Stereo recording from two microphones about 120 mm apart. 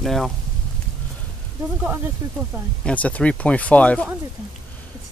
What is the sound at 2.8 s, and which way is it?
Speech, 10° left (ahead or behind).